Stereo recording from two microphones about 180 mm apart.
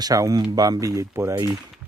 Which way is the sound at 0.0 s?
20° right (ahead or behind).